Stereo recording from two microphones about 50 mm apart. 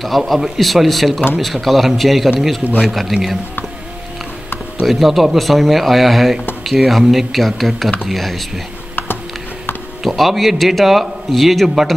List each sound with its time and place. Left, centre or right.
0.0 s a man's voice: centre
4.8 s a man's voice: centre
8.9 s a sound: left
10.0 s a man's voice: centre